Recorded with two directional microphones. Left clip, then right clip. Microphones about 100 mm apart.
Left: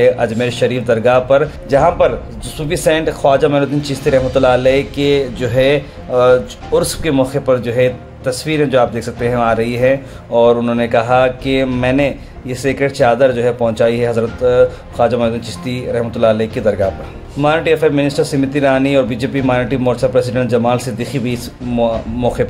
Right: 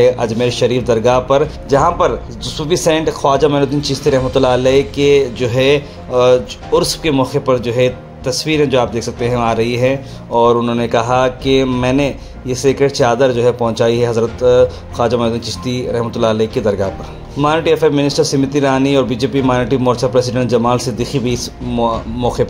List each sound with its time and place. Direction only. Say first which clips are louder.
0.0 s a man's voice: even; 30° right (ahead or behind)